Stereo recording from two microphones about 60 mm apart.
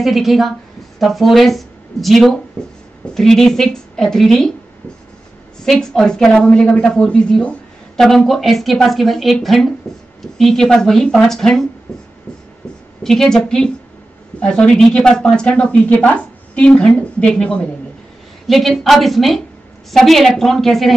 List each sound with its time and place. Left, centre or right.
0.0 s a woman's voice: centre
5.6 s a woman's voice: centre
11.9 s beatboxing: centre
13.0 s a woman's voice: centre
18.5 s a woman's voice: centre